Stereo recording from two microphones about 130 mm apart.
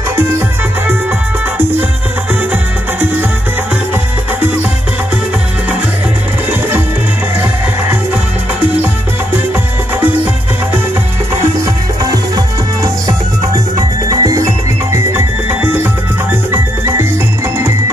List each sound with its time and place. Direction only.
2.5 s music: 15° right (ahead or behind)
11.6 s music: 25° right (ahead or behind)
14.0 s music: 25° right (ahead or behind)